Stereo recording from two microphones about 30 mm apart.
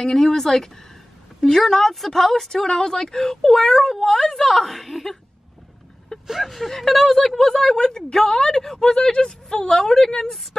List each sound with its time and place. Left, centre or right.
0.0 s speech: centre
6.4 s a woman's voice: centre